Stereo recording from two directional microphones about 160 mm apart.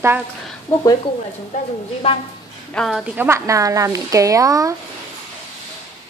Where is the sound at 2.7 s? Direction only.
5° left (ahead or behind).